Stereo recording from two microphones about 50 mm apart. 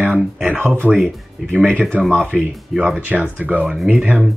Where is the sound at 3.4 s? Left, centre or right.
Right.